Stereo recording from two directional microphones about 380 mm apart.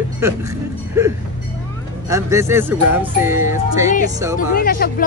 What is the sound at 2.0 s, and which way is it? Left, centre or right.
Speech, centre.